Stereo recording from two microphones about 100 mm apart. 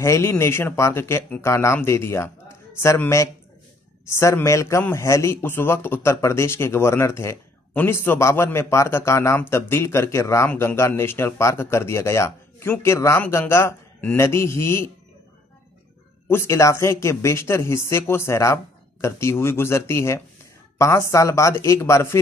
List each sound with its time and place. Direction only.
0.0 s a man's voice: 30° left (ahead or behind)
16.3 s speech: 25° left (ahead or behind)